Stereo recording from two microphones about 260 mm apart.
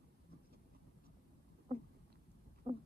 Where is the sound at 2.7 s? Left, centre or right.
Right.